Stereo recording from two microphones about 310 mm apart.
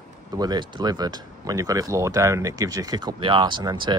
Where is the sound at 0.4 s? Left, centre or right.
Centre.